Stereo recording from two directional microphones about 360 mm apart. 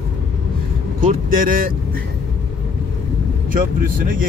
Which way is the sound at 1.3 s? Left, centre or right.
Right.